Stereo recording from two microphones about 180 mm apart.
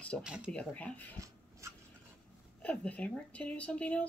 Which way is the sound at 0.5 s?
5° left (ahead or behind).